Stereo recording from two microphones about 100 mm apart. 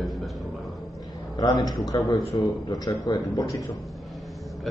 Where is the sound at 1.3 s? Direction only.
40° left (ahead or behind).